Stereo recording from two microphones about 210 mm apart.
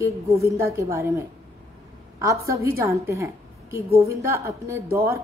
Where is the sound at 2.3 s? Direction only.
15° right (ahead or behind).